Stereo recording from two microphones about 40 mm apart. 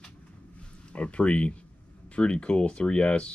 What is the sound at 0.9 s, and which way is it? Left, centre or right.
Speech, left.